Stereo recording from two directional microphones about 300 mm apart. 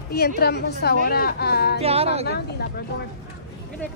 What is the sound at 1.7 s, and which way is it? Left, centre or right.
Speech, centre.